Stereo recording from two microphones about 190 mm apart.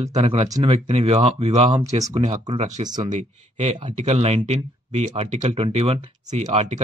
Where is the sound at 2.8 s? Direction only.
20° right (ahead or behind).